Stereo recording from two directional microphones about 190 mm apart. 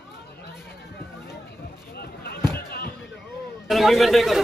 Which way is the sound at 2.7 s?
55° left (ahead or behind).